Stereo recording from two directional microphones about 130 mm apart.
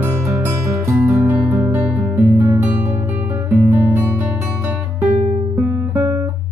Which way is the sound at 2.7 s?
15° right (ahead or behind).